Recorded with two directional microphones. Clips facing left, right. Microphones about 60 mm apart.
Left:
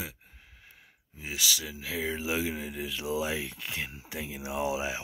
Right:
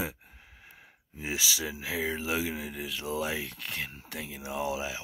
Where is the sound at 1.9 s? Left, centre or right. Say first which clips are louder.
Even; centre.